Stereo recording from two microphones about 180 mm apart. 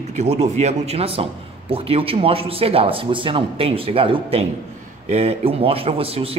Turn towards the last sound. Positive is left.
turn(degrees=-35)  # may be behind; listen again after turning